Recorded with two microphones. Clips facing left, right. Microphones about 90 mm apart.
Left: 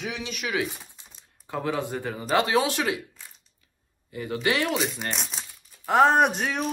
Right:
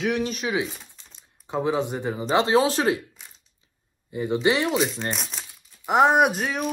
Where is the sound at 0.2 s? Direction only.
35° right (ahead or behind).